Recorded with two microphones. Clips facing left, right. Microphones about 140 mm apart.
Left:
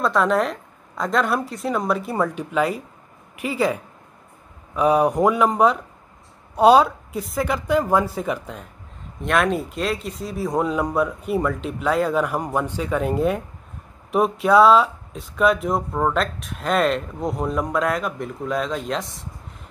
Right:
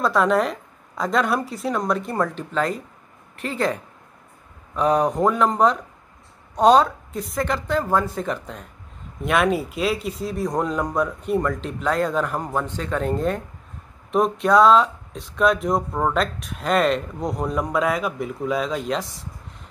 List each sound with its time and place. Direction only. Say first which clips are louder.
0.0 s speech: even; centre (ahead or behind)